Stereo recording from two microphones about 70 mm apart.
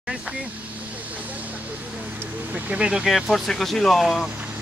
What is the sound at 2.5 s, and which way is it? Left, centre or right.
Speech, centre.